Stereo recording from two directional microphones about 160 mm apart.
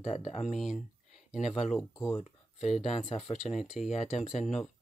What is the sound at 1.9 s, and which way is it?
Speech, 15° left (ahead or behind).